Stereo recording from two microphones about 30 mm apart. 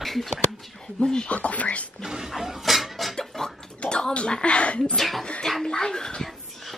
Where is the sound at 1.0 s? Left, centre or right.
Left.